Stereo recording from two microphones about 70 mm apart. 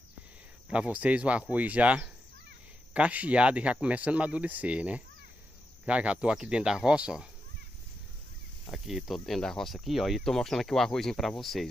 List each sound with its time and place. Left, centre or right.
0.7 s speech: centre
8.7 s speech: centre